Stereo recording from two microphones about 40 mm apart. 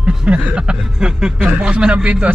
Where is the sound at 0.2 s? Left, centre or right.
Right.